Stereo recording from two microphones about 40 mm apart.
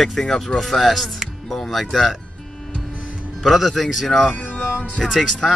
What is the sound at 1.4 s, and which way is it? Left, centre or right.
Music, centre.